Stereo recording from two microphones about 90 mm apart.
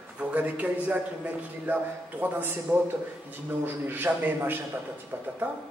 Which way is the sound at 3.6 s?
25° right (ahead or behind).